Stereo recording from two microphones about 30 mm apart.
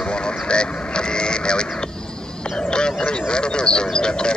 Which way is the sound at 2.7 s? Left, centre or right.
Left.